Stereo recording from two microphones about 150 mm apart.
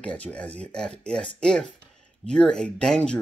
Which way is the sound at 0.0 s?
10° left (ahead or behind).